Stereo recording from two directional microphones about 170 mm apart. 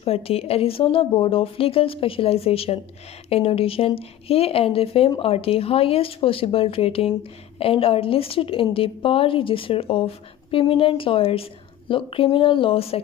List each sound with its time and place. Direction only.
0.0 s a woman's voice: 35° left (ahead or behind)